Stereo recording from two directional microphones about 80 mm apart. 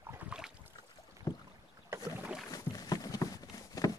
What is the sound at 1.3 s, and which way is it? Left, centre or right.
Rowboat, left.